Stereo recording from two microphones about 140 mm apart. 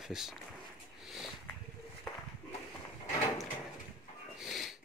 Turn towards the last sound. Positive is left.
turn(degrees=0)  # may be behind; listen again after turning